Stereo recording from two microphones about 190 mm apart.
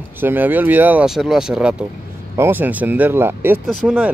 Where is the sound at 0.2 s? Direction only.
10° right (ahead or behind).